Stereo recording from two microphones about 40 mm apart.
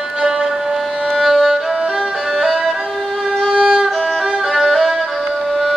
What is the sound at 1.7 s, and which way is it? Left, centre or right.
Violin, right.